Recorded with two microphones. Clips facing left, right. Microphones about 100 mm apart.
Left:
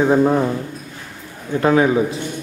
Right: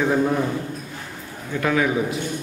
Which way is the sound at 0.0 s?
30° left (ahead or behind).